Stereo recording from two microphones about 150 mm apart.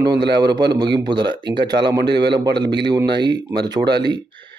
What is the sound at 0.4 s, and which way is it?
A man's voice, 25° right (ahead or behind).